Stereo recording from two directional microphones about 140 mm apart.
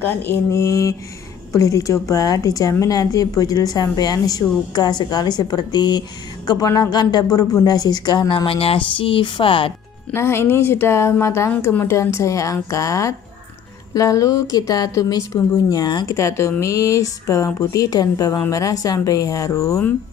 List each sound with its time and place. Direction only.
0.0 s a woman's voice: 15° left (ahead or behind); by 9.7 s 40° left (ahead or behind)
10.1 s a woman's voice: 15° left (ahead or behind)